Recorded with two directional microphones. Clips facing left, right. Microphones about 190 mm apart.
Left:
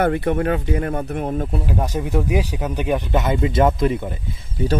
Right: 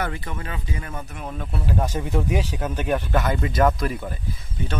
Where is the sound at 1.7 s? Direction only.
10° left (ahead or behind).